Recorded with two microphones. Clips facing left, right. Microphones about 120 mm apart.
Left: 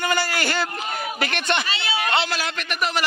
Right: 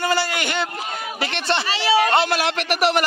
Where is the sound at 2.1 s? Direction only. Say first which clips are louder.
Right 5 dB; 55° right (ahead or behind); by 3.0 s 70° right (ahead or behind).